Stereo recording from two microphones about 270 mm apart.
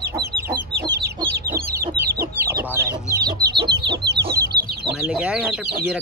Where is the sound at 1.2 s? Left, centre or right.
Centre.